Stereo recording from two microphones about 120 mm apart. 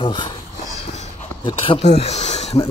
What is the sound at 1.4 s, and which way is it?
Speech, 40° left (ahead or behind).